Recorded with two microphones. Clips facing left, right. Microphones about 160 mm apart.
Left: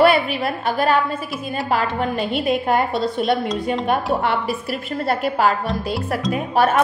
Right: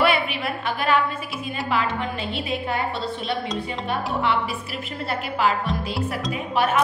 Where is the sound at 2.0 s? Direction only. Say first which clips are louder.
Left 6 dB; 50° left (ahead or behind).